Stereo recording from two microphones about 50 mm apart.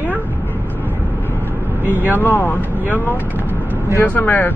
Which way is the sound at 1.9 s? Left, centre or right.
Right.